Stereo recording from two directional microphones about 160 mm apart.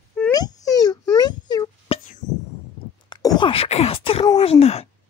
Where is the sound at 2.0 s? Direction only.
50° left (ahead or behind).